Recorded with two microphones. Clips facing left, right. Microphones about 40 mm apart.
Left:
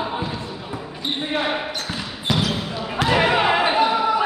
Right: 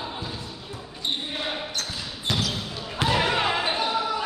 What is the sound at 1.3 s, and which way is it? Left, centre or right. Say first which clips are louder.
Basketball bounce: left 7 dB; left.